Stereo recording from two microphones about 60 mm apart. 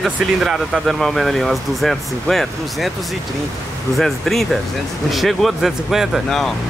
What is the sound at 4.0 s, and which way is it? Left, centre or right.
Speech, centre.